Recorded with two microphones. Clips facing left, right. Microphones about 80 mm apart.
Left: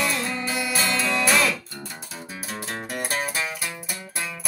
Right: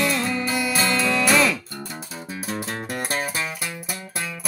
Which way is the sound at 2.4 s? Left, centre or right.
Centre.